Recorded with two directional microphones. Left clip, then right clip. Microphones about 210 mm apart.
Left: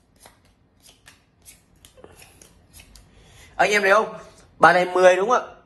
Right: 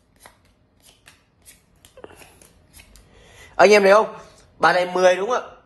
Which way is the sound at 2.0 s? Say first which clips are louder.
Right 5 dB; 50° right (ahead or behind).